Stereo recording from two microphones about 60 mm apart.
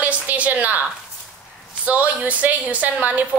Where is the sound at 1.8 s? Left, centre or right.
Right.